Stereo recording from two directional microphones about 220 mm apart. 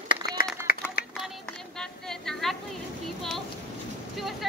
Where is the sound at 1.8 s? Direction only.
Centre (ahead or behind).